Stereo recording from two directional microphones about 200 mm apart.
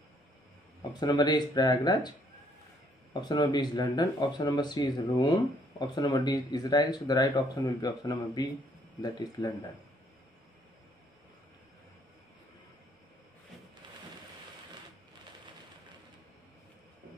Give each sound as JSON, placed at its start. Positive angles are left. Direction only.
{"t": 0.9, "sound": "speech", "side_deg": 20}